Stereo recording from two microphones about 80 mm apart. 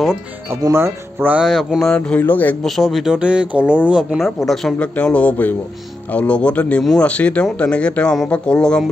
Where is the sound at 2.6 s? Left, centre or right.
Centre.